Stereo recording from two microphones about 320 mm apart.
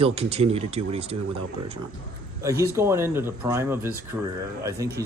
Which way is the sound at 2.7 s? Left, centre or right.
Centre.